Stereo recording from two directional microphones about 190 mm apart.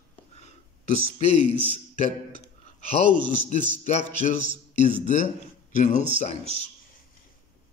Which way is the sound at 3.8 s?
40° left (ahead or behind).